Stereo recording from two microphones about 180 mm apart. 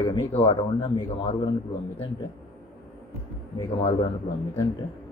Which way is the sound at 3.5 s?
25° left (ahead or behind).